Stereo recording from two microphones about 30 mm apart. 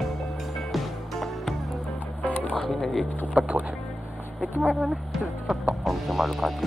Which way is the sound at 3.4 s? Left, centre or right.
Right.